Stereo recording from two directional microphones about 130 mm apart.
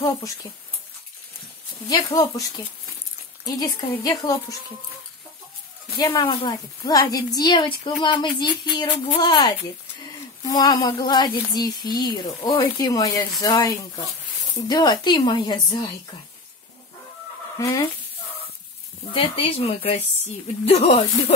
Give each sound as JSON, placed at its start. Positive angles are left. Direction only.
{"t": 1.9, "sound": "speech", "side_deg": 30}
{"t": 3.4, "sound": "speech", "side_deg": 30}
{"t": 5.9, "sound": "speech", "side_deg": 25}
{"t": 17.6, "sound": "speech", "side_deg": 25}
{"t": 19.1, "sound": "a woman's voice", "side_deg": 45}